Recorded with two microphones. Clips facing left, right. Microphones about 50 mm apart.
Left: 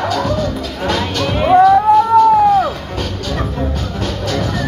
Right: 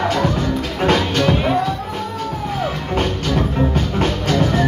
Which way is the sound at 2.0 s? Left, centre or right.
Left.